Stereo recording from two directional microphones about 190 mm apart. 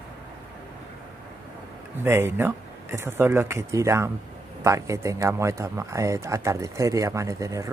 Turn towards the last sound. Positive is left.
turn(degrees=-15)  # may be behind; listen again after turning